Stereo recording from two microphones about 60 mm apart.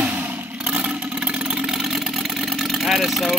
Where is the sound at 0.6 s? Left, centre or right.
Right.